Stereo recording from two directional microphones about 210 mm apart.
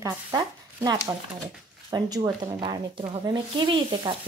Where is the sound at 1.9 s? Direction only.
20° right (ahead or behind).